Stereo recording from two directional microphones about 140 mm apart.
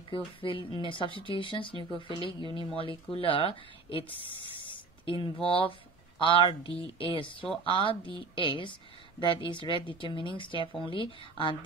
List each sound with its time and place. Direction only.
0.1 s speech: 40° left (ahead or behind)